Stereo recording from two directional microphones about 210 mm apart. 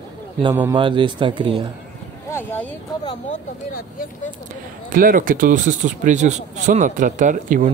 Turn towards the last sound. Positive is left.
turn(degrees=-40)  # may be behind; listen again after turning